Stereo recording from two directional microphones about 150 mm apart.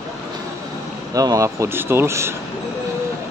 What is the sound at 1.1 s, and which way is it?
Speech, 20° right (ahead or behind).